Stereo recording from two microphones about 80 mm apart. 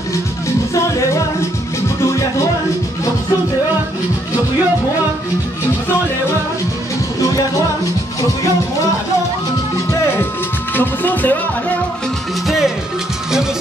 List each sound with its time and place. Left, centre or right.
0.7 s music: left
10.7 s music: left
12.4 s music: centre